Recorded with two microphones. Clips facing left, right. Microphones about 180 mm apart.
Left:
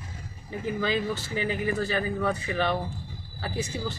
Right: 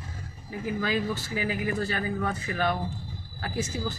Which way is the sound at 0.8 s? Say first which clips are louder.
Left 1 dB; 10° right (ahead or behind).